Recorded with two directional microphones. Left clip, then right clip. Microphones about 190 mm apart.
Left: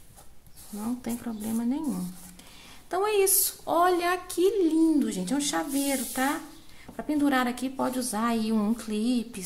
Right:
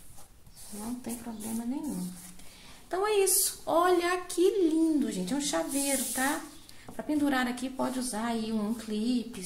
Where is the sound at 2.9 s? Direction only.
20° left (ahead or behind).